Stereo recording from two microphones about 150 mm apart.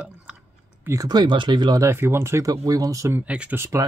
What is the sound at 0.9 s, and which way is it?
Speech, 25° right (ahead or behind).